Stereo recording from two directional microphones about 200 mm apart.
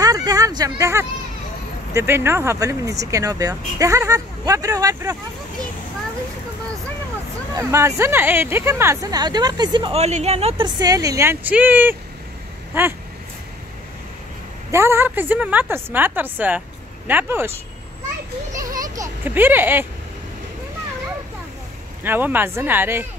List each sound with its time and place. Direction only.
0.0 s speech: 20° right (ahead or behind)
7.5 s speech: 15° right (ahead or behind); by 10.7 s 30° right (ahead or behind)
10.8 s speech: 15° right (ahead or behind)
14.7 s speech: 15° right (ahead or behind)
18.5 s children playing: 15° right (ahead or behind)
22.0 s speech: 10° right (ahead or behind)